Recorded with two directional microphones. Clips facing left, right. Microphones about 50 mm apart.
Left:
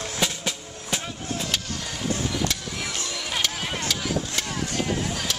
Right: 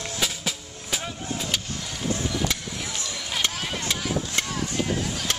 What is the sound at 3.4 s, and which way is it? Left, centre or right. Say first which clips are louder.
Vehicle: even; right.